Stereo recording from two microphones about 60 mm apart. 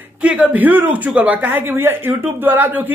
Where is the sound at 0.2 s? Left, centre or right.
Right.